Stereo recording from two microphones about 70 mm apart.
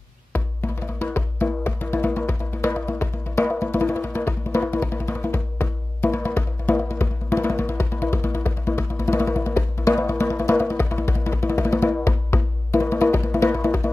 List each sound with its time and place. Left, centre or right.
0.3 s music: left